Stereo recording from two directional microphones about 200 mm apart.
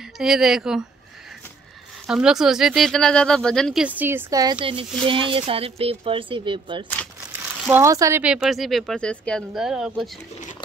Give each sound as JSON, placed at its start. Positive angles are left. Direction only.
{"t": 0.2, "sound": "speech", "side_deg": 0}
{"t": 2.0, "sound": "speech", "side_deg": -5}
{"t": 7.6, "sound": "speech", "side_deg": -10}